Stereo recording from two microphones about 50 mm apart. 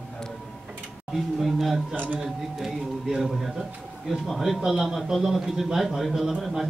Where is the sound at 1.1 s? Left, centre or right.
Centre.